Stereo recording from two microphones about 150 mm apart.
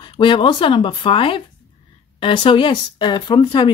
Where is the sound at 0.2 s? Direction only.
30° left (ahead or behind).